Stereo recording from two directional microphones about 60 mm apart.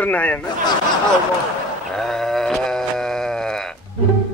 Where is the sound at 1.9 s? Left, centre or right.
Centre.